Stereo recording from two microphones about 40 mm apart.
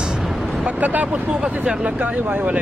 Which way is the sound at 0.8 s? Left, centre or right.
Right.